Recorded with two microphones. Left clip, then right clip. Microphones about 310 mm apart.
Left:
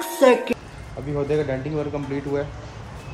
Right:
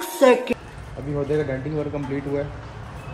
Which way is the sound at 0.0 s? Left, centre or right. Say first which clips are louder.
Even; centre.